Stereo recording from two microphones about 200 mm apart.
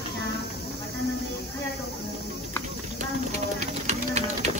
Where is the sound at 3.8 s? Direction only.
35° right (ahead or behind).